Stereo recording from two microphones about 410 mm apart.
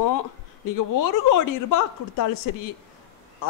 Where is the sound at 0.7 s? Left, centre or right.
Left.